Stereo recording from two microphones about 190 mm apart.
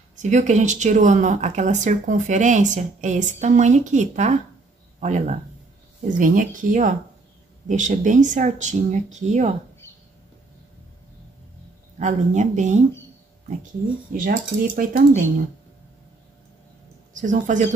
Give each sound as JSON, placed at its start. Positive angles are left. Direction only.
{"t": 0.1, "sound": "speech", "side_deg": -40}
{"t": 12.0, "sound": "speech", "side_deg": -40}
{"t": 14.1, "sound": "speech", "side_deg": -45}
{"t": 17.1, "sound": "speech", "side_deg": -40}